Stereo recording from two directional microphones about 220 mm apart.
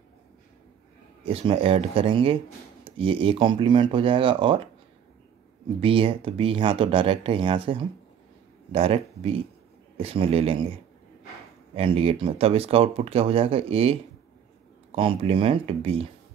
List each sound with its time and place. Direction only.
1.2 s speech: 25° right (ahead or behind)
5.8 s speech: 25° right (ahead or behind)
11.7 s speech: 25° right (ahead or behind)
15.0 s speech: 25° right (ahead or behind)